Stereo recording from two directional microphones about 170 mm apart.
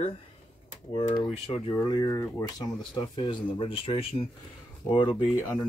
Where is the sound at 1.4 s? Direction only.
30° left (ahead or behind).